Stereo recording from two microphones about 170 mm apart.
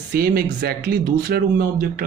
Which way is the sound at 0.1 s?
65° right (ahead or behind).